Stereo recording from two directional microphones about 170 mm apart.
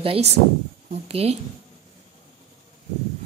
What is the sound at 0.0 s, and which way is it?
A woman's voice, 35° right (ahead or behind).